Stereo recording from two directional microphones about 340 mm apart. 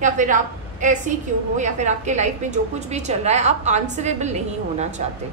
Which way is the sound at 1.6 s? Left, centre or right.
Right.